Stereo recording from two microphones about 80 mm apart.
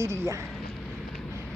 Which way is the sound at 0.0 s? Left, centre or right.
Right.